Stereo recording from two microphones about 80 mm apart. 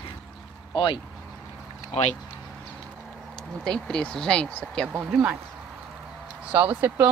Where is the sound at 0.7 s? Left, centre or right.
Left.